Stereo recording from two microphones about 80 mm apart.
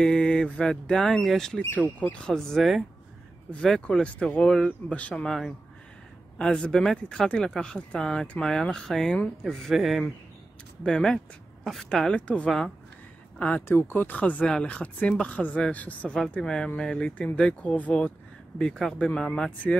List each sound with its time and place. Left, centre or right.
0.0 s speech: centre
2.0 s speech: centre
12.4 s speech: centre
13.4 s speech: centre
18.6 s speech: centre